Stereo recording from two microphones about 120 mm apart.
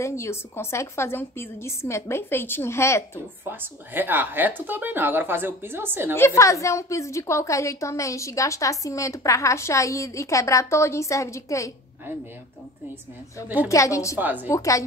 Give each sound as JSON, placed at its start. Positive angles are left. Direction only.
{"t": 0.0, "sound": "a woman's voice", "side_deg": 25}
{"t": 3.4, "sound": "speech", "side_deg": -15}
{"t": 6.1, "sound": "a woman's voice", "side_deg": 25}
{"t": 13.7, "sound": "a woman's voice", "side_deg": 25}
{"t": 14.1, "sound": "speech", "side_deg": -15}
{"t": 14.5, "sound": "a woman's voice", "side_deg": 25}